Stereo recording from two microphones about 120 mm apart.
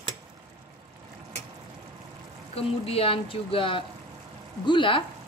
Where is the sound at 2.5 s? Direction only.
55° left (ahead or behind).